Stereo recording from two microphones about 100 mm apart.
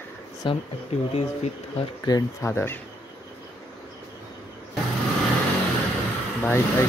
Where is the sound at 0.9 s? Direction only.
90° left.